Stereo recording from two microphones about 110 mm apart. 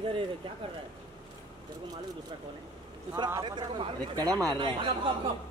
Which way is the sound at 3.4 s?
45° right (ahead or behind).